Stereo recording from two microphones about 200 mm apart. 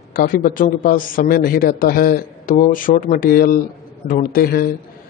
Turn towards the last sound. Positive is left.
turn(degrees=50)  # may be behind; listen again after turning